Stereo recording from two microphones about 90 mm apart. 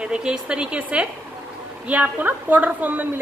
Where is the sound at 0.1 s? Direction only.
10° right (ahead or behind).